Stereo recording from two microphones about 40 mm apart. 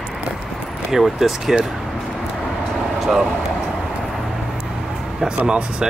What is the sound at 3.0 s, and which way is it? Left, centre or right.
Vehicle, centre.